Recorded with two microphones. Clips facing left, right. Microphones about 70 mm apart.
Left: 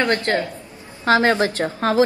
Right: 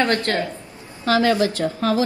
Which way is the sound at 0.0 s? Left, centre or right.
Left.